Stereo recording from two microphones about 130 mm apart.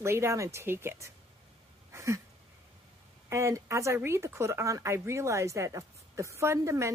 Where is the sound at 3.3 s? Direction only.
20° right (ahead or behind).